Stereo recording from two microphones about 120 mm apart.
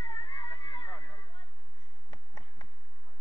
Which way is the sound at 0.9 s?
10° right (ahead or behind).